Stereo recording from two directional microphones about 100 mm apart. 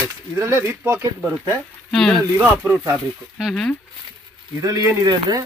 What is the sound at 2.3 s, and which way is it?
Speech, 25° right (ahead or behind).